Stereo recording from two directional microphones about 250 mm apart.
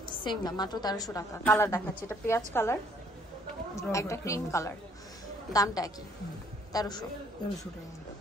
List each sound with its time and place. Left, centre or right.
0.1 s a woman's voice: centre